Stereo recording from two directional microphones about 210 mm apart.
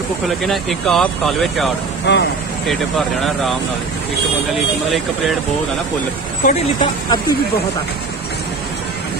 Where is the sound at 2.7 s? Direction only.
Centre (ahead or behind).